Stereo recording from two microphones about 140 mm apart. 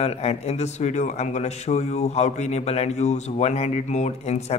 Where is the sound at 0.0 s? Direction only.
50° left (ahead or behind).